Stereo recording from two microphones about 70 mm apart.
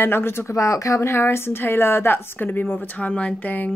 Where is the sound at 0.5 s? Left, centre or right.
Left.